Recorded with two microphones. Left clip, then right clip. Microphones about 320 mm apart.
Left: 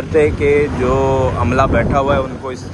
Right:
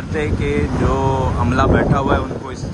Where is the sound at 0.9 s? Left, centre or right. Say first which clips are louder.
Left 2 dB; centre.